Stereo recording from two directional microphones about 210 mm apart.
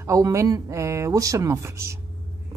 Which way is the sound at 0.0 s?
15° right (ahead or behind).